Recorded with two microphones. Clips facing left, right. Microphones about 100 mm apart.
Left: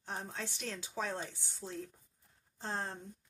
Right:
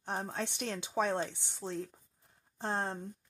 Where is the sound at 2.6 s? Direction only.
55° right (ahead or behind).